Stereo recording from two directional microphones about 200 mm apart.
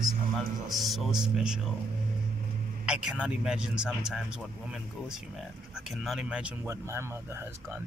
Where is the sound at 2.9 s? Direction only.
5° right (ahead or behind).